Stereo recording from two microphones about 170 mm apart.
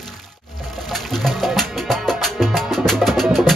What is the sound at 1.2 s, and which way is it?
Music, centre (ahead or behind).